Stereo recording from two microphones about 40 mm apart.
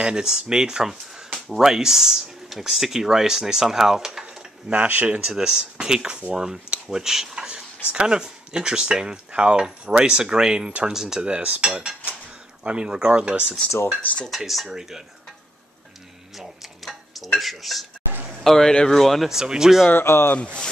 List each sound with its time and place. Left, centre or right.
0.0 s speech: centre
4.6 s cutlery: right
5.2 s speech: centre
11.4 s cutlery: right
12.6 s speech: right
14.3 s speech: centre
14.8 s speech: centre
16.3 s tick-tock: centre
17.4 s speech: centre
18.7 s speech: centre
18.9 s speech: centre
19.2 s speech: centre
19.9 s speech: left
20.3 s speech: left